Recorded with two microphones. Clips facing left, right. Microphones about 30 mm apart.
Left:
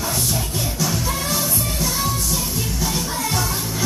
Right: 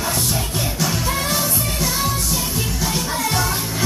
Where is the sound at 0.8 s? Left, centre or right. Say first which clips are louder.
Right 2 dB; right.